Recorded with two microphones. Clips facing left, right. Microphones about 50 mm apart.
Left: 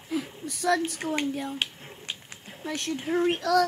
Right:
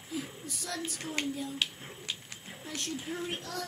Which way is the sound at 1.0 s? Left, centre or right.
Left.